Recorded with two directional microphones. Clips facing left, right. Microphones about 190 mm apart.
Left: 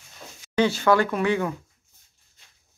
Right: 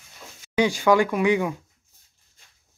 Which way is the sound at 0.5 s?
10° right (ahead or behind).